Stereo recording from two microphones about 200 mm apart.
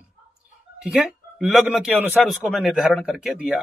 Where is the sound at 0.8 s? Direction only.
Centre (ahead or behind).